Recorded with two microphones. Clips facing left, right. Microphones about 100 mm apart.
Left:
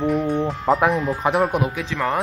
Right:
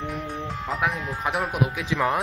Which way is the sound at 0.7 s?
40° left (ahead or behind).